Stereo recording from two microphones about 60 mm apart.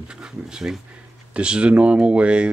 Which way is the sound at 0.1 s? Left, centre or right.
Centre.